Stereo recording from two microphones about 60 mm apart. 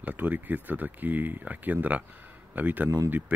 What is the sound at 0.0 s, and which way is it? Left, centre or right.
Speech, right.